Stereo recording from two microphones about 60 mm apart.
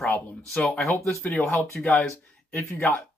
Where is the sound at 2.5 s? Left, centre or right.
Left.